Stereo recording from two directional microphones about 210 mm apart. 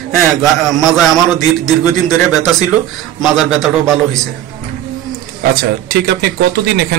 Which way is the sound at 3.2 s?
Centre (ahead or behind).